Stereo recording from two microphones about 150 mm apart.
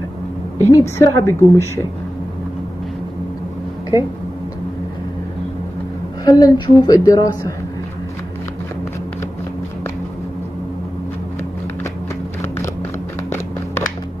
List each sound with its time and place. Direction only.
0.6 s a woman's voice: 20° left (ahead or behind)
6.2 s a woman's voice: 25° left (ahead or behind)